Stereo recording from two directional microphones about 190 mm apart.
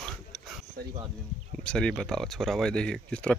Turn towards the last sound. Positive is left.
turn(degrees=5)  # may be behind; listen again after turning